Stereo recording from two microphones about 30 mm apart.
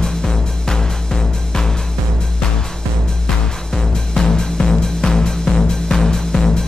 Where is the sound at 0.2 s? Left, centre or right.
Centre.